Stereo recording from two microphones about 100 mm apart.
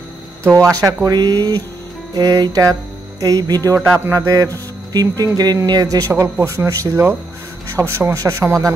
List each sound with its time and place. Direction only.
0.5 s speech: 35° right (ahead or behind)
4.0 s speech: 20° right (ahead or behind)
4.3 s speech: 35° right (ahead or behind)